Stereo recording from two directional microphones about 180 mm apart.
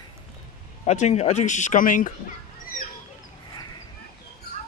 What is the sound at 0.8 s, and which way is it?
Speech, 40° left (ahead or behind).